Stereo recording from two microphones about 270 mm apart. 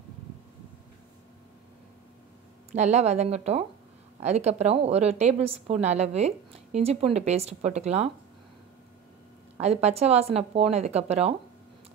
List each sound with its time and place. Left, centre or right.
2.7 s a woman's voice: right
9.6 s a woman's voice: right